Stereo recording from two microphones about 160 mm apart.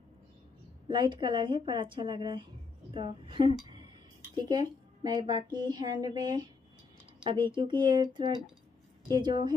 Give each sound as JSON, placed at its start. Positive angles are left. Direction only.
{"t": 0.8, "sound": "a woman's voice", "side_deg": -30}